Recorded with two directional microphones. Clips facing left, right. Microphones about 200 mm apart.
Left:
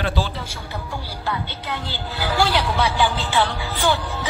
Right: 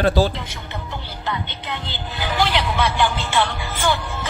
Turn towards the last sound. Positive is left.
turn(degrees=15)  # may be behind; listen again after turning